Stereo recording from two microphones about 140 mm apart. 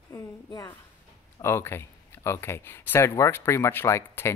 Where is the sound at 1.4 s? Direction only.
20° left (ahead or behind).